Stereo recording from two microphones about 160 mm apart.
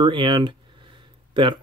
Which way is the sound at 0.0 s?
30° right (ahead or behind).